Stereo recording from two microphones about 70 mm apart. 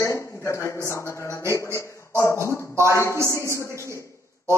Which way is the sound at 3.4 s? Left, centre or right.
Right.